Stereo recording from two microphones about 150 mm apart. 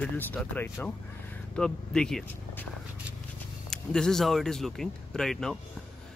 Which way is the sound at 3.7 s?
5° left (ahead or behind).